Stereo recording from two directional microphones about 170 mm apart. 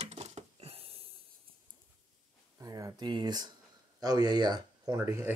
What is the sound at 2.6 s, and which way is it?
Speech, 20° right (ahead or behind).